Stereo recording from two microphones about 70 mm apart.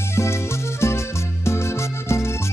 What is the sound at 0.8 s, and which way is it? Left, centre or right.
Music, left.